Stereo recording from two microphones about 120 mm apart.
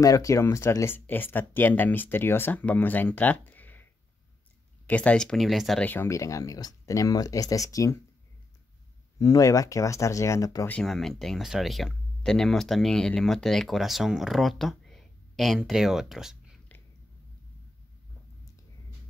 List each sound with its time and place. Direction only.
0.0 s speech: 30° left (ahead or behind); by 5.9 s centre (ahead or behind)
5.9 s speech: 20° left (ahead or behind)
9.2 s speech: 25° left (ahead or behind)
10.7 s speech: 5° left (ahead or behind)